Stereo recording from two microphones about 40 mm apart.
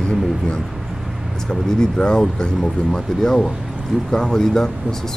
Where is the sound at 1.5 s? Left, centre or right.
Centre.